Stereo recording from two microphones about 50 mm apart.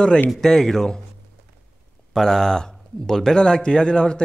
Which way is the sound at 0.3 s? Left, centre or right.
Centre.